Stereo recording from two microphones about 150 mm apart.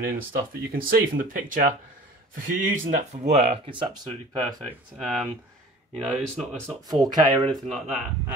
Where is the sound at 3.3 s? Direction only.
45° right (ahead or behind).